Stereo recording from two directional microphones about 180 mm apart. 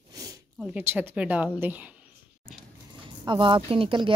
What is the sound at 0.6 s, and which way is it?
Speech, 10° right (ahead or behind).